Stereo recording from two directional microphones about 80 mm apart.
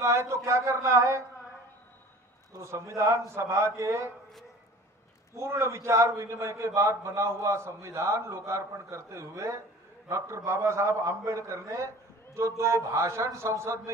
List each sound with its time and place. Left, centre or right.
0.0 s a man's voice: right
2.5 s a man's voice: right
5.3 s a man's voice: right